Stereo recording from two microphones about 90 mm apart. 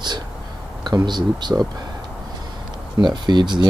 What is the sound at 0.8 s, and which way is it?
Speech, 55° right (ahead or behind).